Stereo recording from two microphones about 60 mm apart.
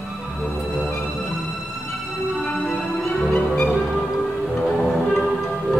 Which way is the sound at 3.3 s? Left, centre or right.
Left.